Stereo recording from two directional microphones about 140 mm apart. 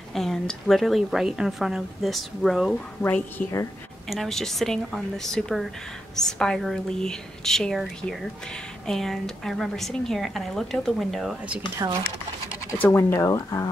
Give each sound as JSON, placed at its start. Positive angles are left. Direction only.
{"t": 0.1, "sound": "a woman's voice", "side_deg": 0}
{"t": 3.0, "sound": "a woman's voice", "side_deg": 10}
{"t": 4.1, "sound": "a woman's voice", "side_deg": 0}
{"t": 12.7, "sound": "speech", "side_deg": 15}